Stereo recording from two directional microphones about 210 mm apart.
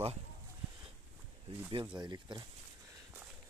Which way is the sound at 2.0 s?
20° right (ahead or behind).